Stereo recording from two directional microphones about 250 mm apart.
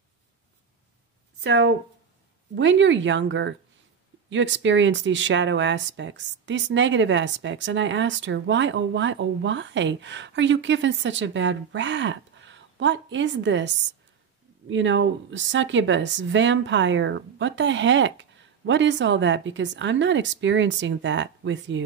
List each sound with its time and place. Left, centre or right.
1.4 s speech: right
14.7 s speech: right